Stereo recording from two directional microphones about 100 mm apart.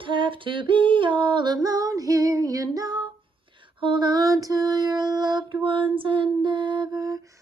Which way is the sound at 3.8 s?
50° right (ahead or behind).